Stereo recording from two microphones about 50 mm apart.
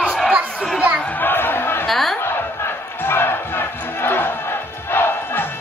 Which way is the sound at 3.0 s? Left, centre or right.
Left.